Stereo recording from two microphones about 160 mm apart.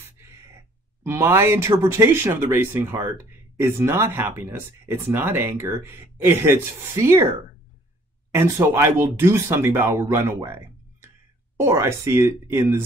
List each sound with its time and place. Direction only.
1.0 s speech: 15° right (ahead or behind)
8.4 s speech: 15° right (ahead or behind)